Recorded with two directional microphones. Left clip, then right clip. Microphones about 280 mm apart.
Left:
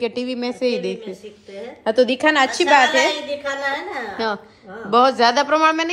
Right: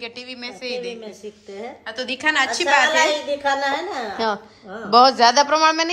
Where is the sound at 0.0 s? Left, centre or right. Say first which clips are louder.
Left 9 dB; centre.